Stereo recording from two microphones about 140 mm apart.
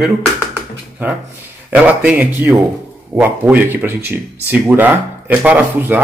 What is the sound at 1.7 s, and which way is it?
Speech, 10° right (ahead or behind).